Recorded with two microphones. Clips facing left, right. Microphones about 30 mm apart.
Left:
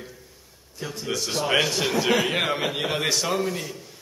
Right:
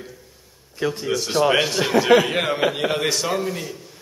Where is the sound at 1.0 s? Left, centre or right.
Centre.